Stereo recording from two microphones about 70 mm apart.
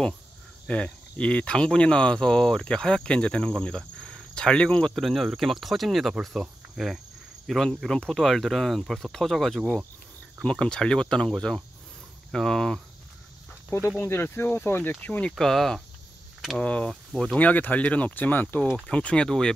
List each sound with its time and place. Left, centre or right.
0.7 s speech: centre
5.0 s speech: centre
6.4 s cricket: centre
7.4 s speech: centre
13.7 s speech: left
15.3 s speech: centre; by 18.6 s left
18.9 s speech: centre